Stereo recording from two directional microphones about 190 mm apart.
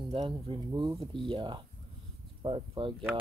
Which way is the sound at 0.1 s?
25° right (ahead or behind).